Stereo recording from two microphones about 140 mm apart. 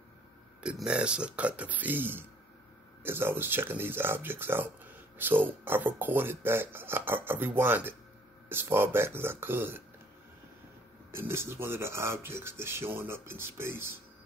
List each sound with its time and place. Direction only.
0.6 s speech: 5° right (ahead or behind)
11.1 s speech: 15° right (ahead or behind)